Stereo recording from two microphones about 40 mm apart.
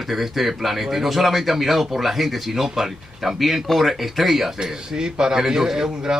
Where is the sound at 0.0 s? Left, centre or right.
Centre.